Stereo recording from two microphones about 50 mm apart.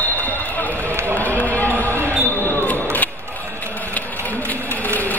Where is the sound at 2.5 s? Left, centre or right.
Left.